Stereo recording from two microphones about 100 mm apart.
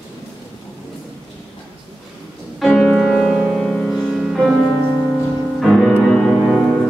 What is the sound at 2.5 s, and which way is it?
Music, 5° left (ahead or behind).